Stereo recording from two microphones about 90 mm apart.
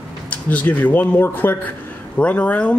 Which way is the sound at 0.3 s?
15° left (ahead or behind).